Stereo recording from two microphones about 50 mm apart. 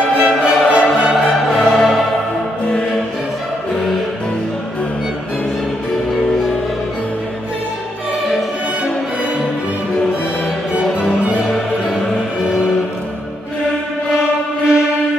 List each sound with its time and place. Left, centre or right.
0.2 s music: right
1.6 s music: centre